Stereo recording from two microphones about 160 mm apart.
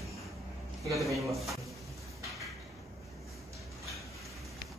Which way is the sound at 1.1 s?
Centre (ahead or behind).